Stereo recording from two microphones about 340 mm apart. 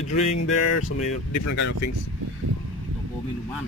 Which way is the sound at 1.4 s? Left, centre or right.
Left.